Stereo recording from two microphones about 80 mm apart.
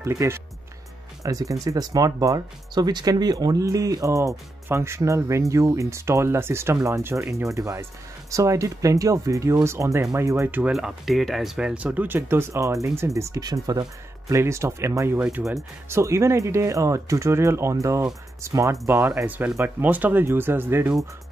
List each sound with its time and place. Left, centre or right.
0.0 s speech: right
3.6 s speech: right
10.7 s speech: centre
11.7 s speech: centre; by 13.8 s right
14.3 s speech: right
15.1 s speech: centre
15.9 s speech: right